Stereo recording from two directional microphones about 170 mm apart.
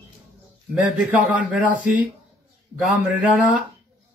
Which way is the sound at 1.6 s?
50° left (ahead or behind).